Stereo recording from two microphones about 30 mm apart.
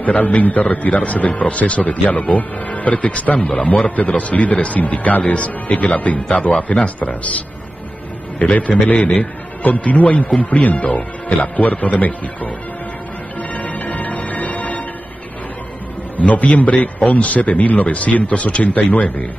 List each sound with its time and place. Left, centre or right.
0.0 s a man's voice: left
5.2 s speech: left
8.5 s a man's voice: left
13.7 s music: left
14.1 s music: left
16.2 s a man's voice: left